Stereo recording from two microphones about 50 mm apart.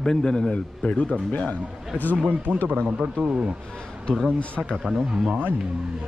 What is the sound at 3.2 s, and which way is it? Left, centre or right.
Speech, centre.